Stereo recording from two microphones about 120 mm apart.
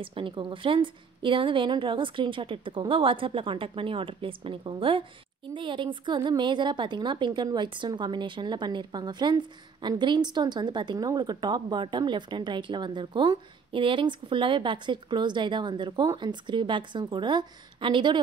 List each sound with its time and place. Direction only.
0.0 s a woman's voice: 45° right (ahead or behind)